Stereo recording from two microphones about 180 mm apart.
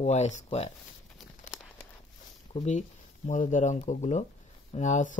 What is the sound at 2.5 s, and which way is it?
Speech, 40° left (ahead or behind).